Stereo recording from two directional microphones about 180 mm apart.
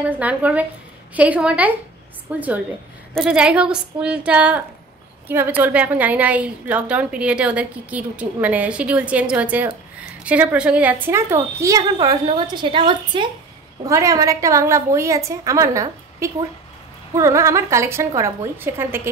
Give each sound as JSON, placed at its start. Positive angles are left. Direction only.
{"t": 0.2, "sound": "a woman's voice", "side_deg": -10}